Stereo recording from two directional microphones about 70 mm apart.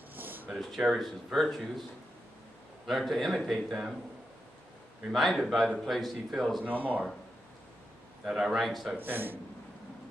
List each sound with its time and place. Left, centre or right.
0.1 s a sound: right
0.5 s speech: centre
2.9 s speech: centre
5.1 s speech: centre
6.6 s a man's voice: right
8.3 s speech: centre
8.9 s a man's voice: right